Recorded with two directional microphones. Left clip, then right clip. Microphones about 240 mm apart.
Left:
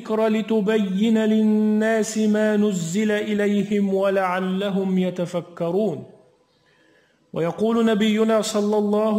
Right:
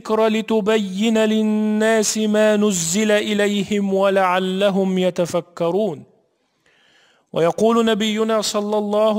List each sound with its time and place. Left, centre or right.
0.0 s speech: right
7.3 s a man's voice: right